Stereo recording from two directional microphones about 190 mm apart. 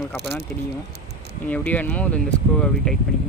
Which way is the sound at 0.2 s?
60° right (ahead or behind).